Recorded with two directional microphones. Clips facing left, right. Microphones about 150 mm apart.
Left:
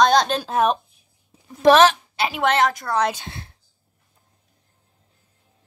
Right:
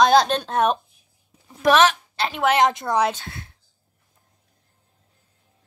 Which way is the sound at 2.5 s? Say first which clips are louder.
Right 2 dB; 20° right (ahead or behind).